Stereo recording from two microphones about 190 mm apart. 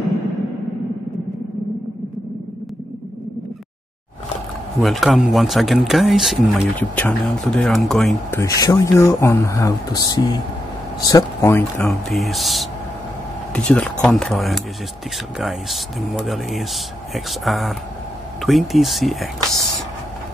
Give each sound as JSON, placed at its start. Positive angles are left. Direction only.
{"t": 4.8, "sound": "speech", "side_deg": 0}
{"t": 8.3, "sound": "speech", "side_deg": 15}
{"t": 11.9, "sound": "speech", "side_deg": 0}